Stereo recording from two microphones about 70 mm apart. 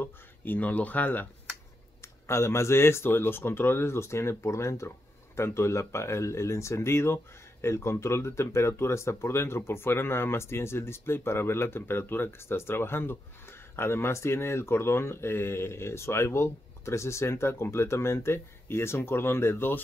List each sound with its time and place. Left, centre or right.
0.0 s speech: left
2.0 s speech: left